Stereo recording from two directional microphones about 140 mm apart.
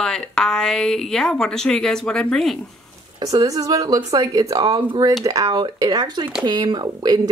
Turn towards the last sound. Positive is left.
turn(degrees=-30)  # may be behind; listen again after turning